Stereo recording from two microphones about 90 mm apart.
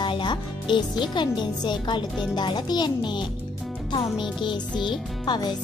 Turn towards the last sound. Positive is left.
turn(degrees=55)  # may be behind; listen again after turning